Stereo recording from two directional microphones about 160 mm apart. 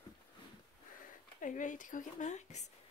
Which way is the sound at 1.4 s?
55° left (ahead or behind).